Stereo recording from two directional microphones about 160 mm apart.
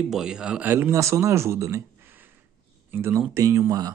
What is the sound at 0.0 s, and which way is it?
Speech, centre (ahead or behind).